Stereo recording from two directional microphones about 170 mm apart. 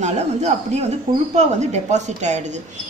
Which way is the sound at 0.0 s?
45° right (ahead or behind).